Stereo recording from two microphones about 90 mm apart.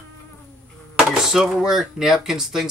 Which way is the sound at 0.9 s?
5° right (ahead or behind).